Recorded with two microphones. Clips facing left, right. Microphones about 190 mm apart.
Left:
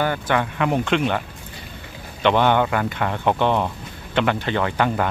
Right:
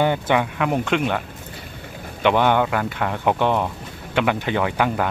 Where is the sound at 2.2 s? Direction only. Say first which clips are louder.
Even; 5° right (ahead or behind).